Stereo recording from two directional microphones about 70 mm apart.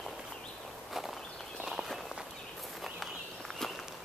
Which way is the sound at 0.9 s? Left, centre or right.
Centre.